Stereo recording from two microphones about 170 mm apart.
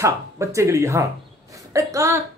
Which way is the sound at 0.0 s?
15° right (ahead or behind).